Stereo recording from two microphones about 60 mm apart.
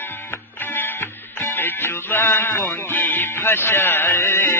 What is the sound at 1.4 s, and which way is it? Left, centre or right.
Music, left.